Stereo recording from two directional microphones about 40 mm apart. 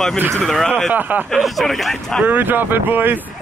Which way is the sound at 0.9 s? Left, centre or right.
Right.